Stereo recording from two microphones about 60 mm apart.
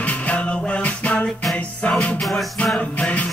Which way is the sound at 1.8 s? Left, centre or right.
Centre.